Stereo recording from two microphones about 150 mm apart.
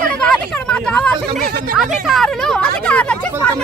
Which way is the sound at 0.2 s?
5° left (ahead or behind).